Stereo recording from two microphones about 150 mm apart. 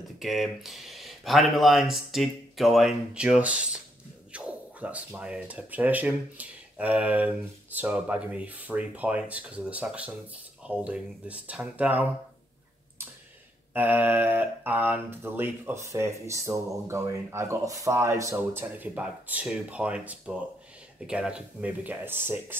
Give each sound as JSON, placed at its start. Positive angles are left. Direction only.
{"t": 0.2, "sound": "speech", "side_deg": 0}
{"t": 13.7, "sound": "speech", "side_deg": -10}